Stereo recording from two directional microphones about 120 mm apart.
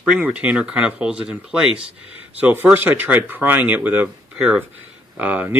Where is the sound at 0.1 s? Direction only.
10° right (ahead or behind).